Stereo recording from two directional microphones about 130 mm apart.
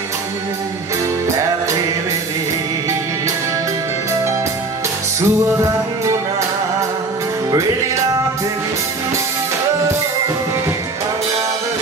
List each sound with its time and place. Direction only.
5.2 s music: 25° right (ahead or behind)